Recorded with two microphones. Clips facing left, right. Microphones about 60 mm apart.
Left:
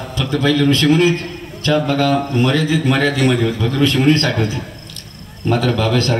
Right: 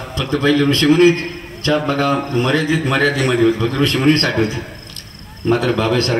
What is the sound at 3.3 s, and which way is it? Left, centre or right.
Speech, centre.